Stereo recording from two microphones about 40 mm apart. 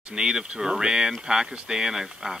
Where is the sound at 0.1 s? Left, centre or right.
Right.